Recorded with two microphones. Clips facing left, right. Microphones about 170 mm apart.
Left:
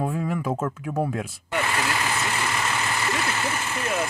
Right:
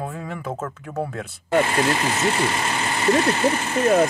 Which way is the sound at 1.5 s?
40° right (ahead or behind).